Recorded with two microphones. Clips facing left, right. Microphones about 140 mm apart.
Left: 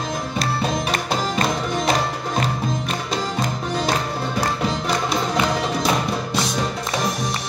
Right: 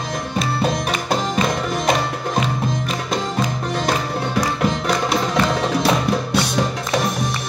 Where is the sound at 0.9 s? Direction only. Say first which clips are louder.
Right 2 dB; centre (ahead or behind).